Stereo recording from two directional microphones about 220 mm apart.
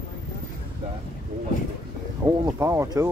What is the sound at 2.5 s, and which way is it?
Speech, 15° right (ahead or behind).